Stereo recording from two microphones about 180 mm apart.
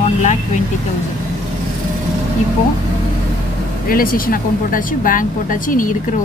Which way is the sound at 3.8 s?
55° left (ahead or behind).